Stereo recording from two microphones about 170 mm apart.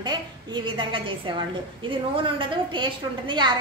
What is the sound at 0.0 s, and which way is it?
A woman's voice, 25° right (ahead or behind).